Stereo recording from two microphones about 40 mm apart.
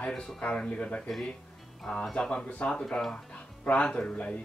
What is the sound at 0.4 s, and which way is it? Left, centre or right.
Speech, left.